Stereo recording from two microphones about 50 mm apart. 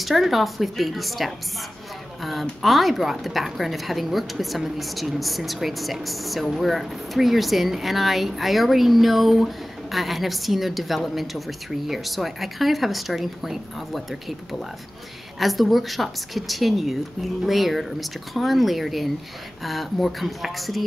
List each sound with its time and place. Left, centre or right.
0.0 s a woman's voice: centre
2.6 s a woman's voice: centre
15.3 s a woman's voice: centre